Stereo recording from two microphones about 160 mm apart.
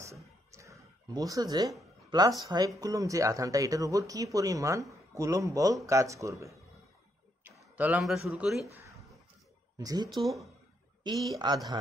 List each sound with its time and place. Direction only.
0.0 s a sound: 20° right (ahead or behind)
2.0 s speech: 25° right (ahead or behind); by 8.5 s centre (ahead or behind)
9.8 s speech: 25° right (ahead or behind)
10.1 s speech: centre (ahead or behind)
11.1 s speech: 25° right (ahead or behind)